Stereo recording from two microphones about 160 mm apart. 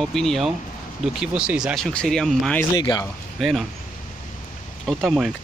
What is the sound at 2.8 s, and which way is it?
Speech, 25° left (ahead or behind).